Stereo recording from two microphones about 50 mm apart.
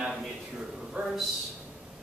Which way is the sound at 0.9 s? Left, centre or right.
Centre.